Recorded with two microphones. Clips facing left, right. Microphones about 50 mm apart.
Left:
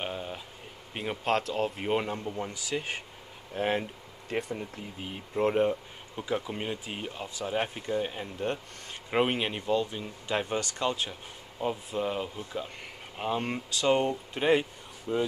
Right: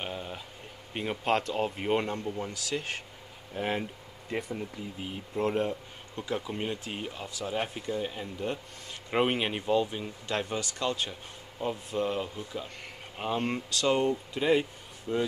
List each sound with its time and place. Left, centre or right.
0.0 s a sound: centre
0.9 s speech: centre
3.5 s speech: left
4.6 s speech: centre
9.1 s speech: centre
10.2 s speech: centre
13.9 s speech: left